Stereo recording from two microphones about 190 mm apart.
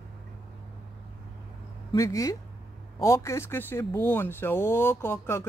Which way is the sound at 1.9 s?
15° left (ahead or behind).